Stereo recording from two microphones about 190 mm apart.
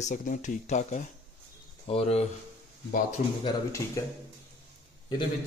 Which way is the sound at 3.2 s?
40° left (ahead or behind).